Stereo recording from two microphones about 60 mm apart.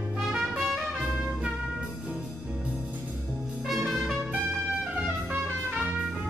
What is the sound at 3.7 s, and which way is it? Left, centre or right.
Music, centre.